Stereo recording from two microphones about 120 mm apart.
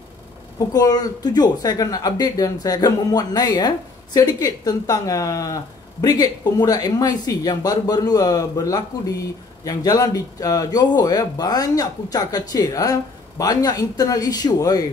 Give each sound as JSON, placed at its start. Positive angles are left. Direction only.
{"t": 0.6, "sound": "speech", "side_deg": 35}